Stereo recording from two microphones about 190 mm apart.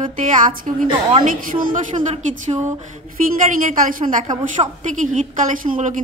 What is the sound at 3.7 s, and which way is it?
A woman's voice, 45° right (ahead or behind).